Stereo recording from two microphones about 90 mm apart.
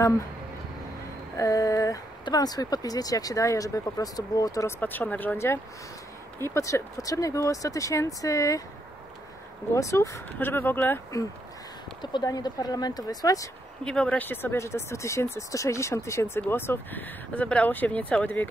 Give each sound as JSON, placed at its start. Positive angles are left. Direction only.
{"t": 1.3, "sound": "speech", "side_deg": 40}
{"t": 4.6, "sound": "speech", "side_deg": 20}
{"t": 6.4, "sound": "speech", "side_deg": 35}
{"t": 9.8, "sound": "speech", "side_deg": 35}
{"t": 12.0, "sound": "speech", "side_deg": 50}
{"t": 13.8, "sound": "speech", "side_deg": 10}